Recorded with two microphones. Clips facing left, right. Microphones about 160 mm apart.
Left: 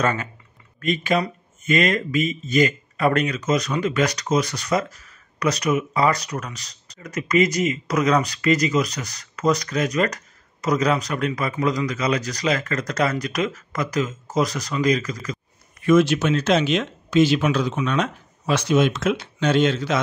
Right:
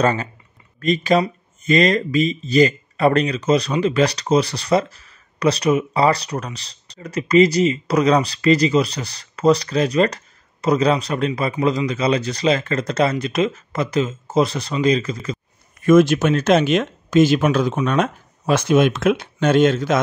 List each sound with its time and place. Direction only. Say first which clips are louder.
0.0 s speech: right 4 dB; 30° right (ahead or behind)
15.8 s speech: right 4 dB; 50° right (ahead or behind)